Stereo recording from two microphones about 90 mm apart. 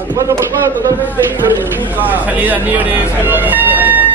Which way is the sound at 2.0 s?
20° right (ahead or behind).